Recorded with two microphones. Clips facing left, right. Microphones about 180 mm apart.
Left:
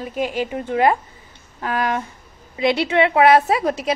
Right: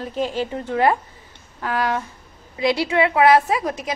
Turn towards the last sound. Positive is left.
turn(degrees=30)  # may be behind; listen again after turning